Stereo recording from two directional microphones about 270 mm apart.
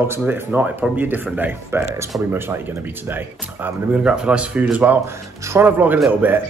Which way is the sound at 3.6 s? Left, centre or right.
Centre.